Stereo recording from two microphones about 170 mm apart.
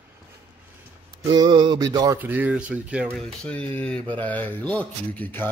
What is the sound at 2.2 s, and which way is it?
Speech, 10° right (ahead or behind).